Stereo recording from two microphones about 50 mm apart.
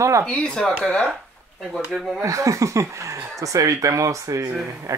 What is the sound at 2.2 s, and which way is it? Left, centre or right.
Speech, right.